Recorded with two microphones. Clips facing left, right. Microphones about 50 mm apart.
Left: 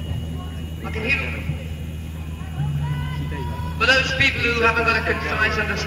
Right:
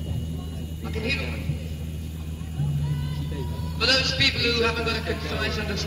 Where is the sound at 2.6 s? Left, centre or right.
Left.